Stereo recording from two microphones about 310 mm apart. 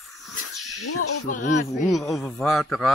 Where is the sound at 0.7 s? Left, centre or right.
Left.